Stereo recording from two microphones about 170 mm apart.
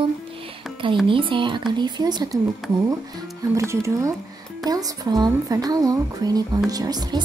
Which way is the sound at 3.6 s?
15° right (ahead or behind).